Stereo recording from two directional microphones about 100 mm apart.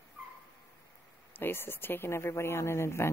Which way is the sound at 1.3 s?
20° left (ahead or behind).